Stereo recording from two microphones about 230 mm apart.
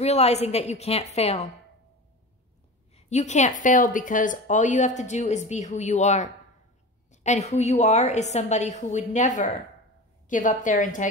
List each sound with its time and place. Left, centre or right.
0.0 s a woman's voice: left
2.9 s a woman's voice: left